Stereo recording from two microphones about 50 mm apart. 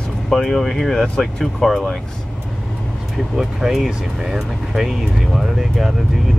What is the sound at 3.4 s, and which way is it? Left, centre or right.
Speech, centre.